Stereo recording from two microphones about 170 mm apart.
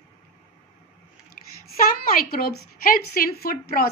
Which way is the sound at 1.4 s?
55° left (ahead or behind).